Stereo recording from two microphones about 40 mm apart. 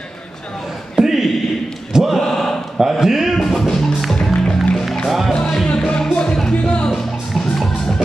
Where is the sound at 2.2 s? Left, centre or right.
Centre.